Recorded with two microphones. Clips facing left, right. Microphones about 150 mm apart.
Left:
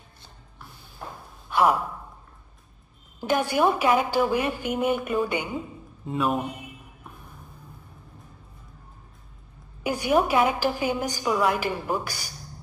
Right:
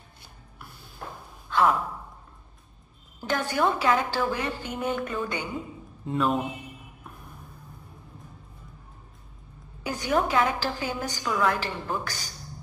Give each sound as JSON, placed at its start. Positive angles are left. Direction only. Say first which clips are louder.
{"t": 1.5, "sound": "sigh", "louder": "left 2 dB", "side_deg": 15}
{"t": 3.2, "sound": "a woman's voice", "louder": "left 3 dB", "side_deg": 15}
{"t": 6.0, "sound": "speech", "louder": "even", "side_deg": 5}
{"t": 9.8, "sound": "a woman's voice", "louder": "left 4 dB", "side_deg": 15}